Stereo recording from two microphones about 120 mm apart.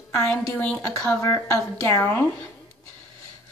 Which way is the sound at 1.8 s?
20° left (ahead or behind).